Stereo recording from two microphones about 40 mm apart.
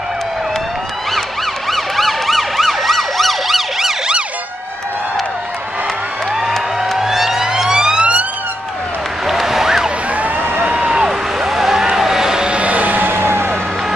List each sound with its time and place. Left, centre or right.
1.7 s emergency vehicle: centre
7.0 s emergency vehicle: centre
9.2 s applause: centre
10.1 s a sound: right
11.0 s vehicle: centre
12.5 s a sound: right
13.0 s vehicle: right